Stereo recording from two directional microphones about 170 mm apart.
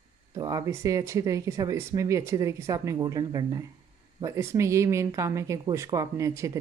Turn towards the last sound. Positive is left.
turn(degrees=-20)  # may be behind; listen again after turning